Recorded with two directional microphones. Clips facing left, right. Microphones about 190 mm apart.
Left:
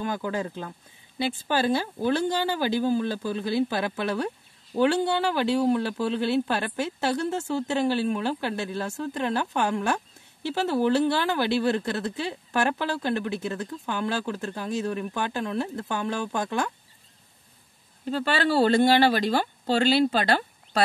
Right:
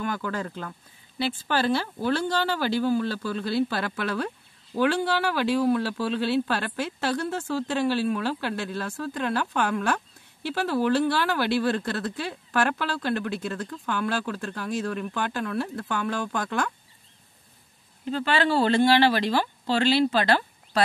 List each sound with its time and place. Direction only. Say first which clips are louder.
0.0 s speech: left 1 dB; 15° left (ahead or behind)
18.0 s speech: even; 40° left (ahead or behind)